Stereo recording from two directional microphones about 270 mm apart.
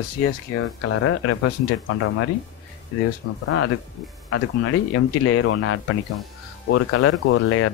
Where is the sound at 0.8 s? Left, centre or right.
Left.